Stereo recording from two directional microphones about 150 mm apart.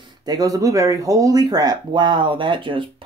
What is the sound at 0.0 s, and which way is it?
Speech, 30° right (ahead or behind).